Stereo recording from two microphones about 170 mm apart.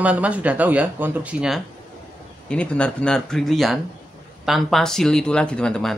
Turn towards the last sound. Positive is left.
turn(degrees=5)  # may be behind; listen again after turning